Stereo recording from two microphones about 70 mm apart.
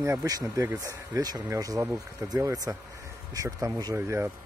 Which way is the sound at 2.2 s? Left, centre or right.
Right.